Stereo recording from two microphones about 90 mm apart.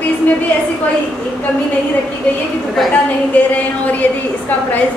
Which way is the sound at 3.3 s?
15° left (ahead or behind).